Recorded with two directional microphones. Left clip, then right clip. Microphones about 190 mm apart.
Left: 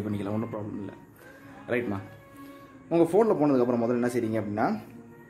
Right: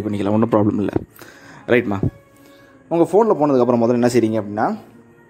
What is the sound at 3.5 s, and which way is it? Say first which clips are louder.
Speech: right 10 dB; 30° right (ahead or behind).